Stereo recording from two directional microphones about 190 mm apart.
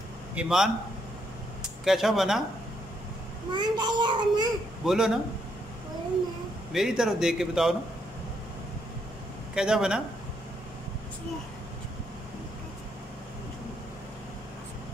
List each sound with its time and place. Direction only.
0.3 s a man's voice: 5° right (ahead or behind)
3.5 s a child's voice: 25° right (ahead or behind)
4.8 s a man's voice: 5° right (ahead or behind)
6.7 s a man's voice: centre (ahead or behind)
9.6 s a man's voice: 5° right (ahead or behind)